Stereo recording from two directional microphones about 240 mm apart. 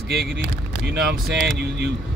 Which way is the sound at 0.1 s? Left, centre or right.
Right.